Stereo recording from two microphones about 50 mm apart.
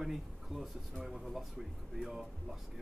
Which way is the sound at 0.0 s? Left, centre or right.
Centre.